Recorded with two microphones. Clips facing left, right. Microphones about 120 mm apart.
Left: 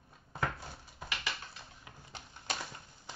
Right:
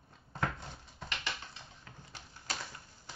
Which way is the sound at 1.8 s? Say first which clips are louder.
Left 2 dB; 20° left (ahead or behind).